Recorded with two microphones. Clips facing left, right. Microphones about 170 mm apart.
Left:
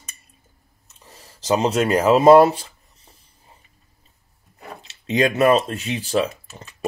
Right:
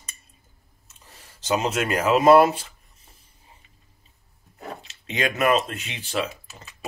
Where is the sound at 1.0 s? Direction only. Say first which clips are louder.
Left 5 dB; 35° left (ahead or behind).